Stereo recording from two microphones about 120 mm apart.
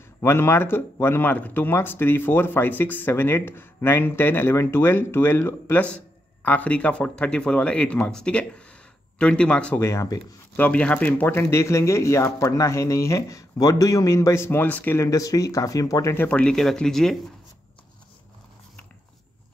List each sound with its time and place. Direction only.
0.2 s speech: 20° left (ahead or behind)
9.8 s speech: 20° left (ahead or behind)
15.0 s speech: 30° left (ahead or behind)
16.3 s speech: 10° left (ahead or behind)